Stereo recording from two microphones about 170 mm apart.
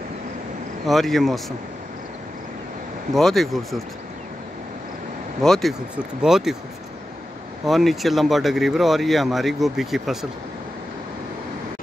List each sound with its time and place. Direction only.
0.8 s speech: centre (ahead or behind)
3.2 s speech: centre (ahead or behind)
5.4 s speech: centre (ahead or behind)
7.6 s speech: centre (ahead or behind)